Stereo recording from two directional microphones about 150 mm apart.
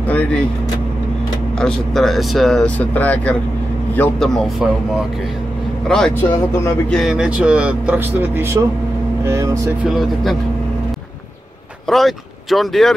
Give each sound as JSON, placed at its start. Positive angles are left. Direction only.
{"t": 0.1, "sound": "speech", "side_deg": 10}
{"t": 1.6, "sound": "speech", "side_deg": 0}
{"t": 5.9, "sound": "speech", "side_deg": 5}
{"t": 9.2, "sound": "vehicle", "side_deg": -20}
{"t": 9.8, "sound": "speech", "side_deg": 0}
{"t": 11.9, "sound": "speech", "side_deg": 0}